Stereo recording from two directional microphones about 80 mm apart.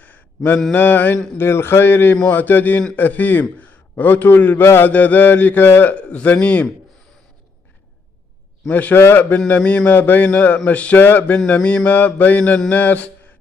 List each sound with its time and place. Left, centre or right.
0.0 s a sound: left
0.7 s a man's voice: left
8.6 s a man's voice: left